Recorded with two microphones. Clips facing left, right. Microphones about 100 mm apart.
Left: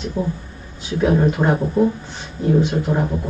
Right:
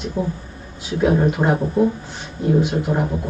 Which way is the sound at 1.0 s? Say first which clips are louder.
Even; 10° right (ahead or behind).